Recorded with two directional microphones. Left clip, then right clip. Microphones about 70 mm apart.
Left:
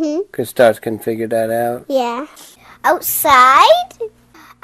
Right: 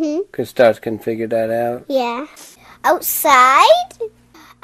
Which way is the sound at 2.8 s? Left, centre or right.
Centre.